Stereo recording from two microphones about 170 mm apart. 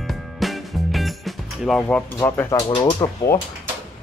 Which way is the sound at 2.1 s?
10° left (ahead or behind).